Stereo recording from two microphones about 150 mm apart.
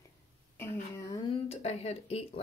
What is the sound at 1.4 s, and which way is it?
Speech, 45° left (ahead or behind).